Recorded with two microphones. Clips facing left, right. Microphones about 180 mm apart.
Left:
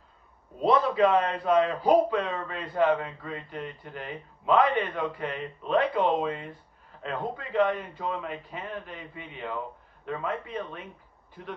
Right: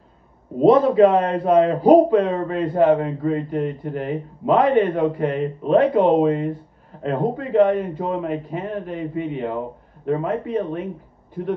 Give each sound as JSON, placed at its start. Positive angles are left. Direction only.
{"t": 0.6, "sound": "a man's voice", "side_deg": -45}